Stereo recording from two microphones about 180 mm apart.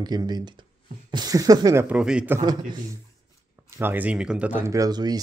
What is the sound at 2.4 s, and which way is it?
Speech, 25° right (ahead or behind).